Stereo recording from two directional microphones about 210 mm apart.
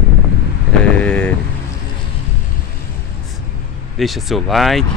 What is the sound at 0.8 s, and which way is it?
Speech, 5° left (ahead or behind).